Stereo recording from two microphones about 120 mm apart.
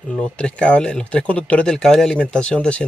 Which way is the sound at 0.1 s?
10° left (ahead or behind).